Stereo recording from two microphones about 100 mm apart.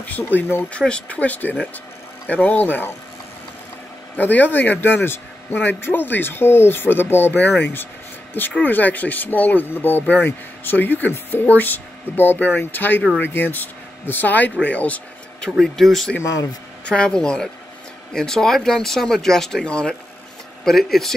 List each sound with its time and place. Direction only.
0.0 s speech: 15° left (ahead or behind)
0.7 s speech: 10° left (ahead or behind)
4.2 s speech: 20° left (ahead or behind)
15.6 s speech: 5° left (ahead or behind)